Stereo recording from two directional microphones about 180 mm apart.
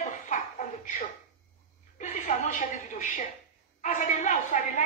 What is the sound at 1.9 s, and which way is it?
A woman's voice, 45° left (ahead or behind).